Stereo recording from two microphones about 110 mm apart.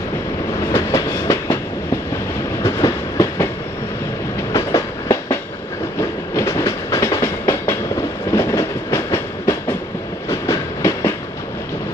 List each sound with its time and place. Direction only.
0.7 s train: 35° left (ahead or behind)
2.6 s train: 30° left (ahead or behind)
4.5 s train: 30° left (ahead or behind)